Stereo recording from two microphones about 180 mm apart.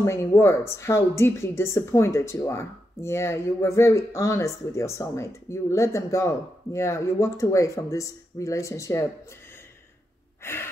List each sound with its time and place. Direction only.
0.0 s speech: 15° left (ahead or behind)
10.4 s gasp: 15° left (ahead or behind)